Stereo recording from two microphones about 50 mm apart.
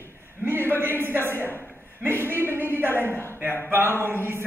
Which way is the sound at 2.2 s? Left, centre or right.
Right.